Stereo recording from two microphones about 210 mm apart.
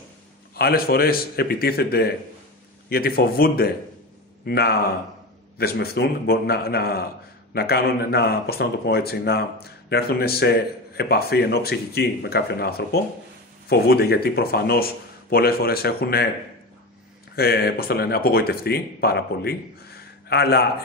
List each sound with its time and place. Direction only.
0.6 s speech: 45° left (ahead or behind)
17.4 s speech: 50° left (ahead or behind)